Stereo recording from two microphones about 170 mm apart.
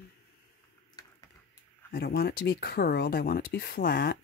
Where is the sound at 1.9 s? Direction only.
65° left (ahead or behind).